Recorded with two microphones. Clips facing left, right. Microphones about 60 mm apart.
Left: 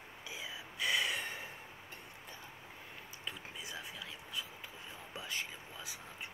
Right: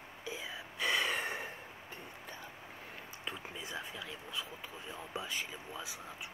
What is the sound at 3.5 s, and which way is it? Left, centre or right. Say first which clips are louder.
Whispering: right 3 dB; right.